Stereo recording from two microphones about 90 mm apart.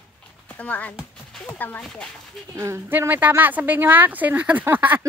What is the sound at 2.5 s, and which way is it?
Speech, 35° right (ahead or behind).